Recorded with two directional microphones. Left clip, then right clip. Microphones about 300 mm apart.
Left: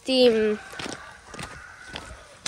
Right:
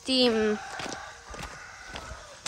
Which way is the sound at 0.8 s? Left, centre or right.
Left.